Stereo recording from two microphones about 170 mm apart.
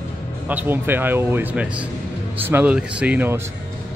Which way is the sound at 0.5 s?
10° right (ahead or behind).